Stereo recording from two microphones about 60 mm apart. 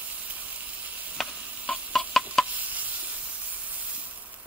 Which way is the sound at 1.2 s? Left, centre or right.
Centre.